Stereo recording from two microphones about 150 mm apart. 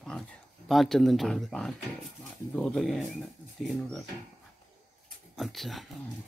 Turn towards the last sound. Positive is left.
turn(degrees=0)  # may be behind; listen again after turning